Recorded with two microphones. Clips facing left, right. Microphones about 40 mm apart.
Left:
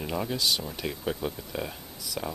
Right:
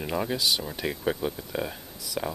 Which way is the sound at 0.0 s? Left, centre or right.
Centre.